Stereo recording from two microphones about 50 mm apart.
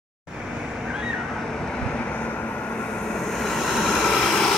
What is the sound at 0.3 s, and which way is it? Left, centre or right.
Vehicle, centre.